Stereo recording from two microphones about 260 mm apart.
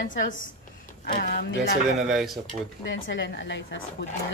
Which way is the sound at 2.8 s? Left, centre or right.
Left.